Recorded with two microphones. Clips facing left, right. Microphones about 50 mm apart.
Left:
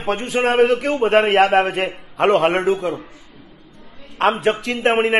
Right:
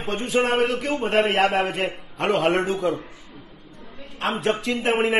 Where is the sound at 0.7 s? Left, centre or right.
Left.